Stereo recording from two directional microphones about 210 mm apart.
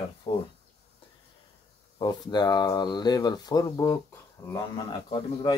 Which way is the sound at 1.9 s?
20° left (ahead or behind).